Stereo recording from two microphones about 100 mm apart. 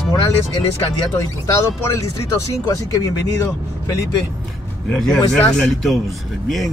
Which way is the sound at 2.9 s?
35° left (ahead or behind).